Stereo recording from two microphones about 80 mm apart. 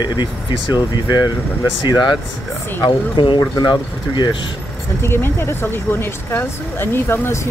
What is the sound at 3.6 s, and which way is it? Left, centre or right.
Speech, left.